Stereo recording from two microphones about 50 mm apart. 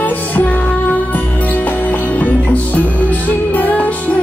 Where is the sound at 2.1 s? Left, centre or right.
Left.